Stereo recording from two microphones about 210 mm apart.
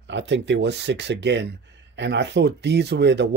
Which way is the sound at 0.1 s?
60° right (ahead or behind).